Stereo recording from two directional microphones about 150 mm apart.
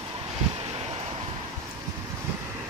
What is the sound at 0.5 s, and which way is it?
Vehicle, 40° right (ahead or behind).